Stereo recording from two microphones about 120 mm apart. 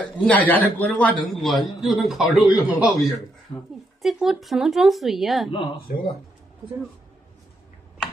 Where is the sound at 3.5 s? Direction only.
45° left (ahead or behind).